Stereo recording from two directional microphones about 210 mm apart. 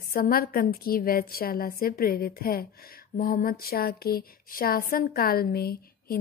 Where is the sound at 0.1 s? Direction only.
45° left (ahead or behind).